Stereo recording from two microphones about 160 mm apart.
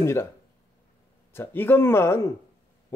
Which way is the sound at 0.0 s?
15° left (ahead or behind).